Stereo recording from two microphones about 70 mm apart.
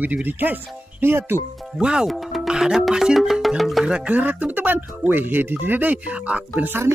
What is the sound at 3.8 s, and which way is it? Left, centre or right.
Speech, centre.